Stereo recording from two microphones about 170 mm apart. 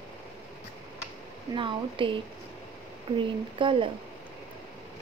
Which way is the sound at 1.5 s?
30° right (ahead or behind).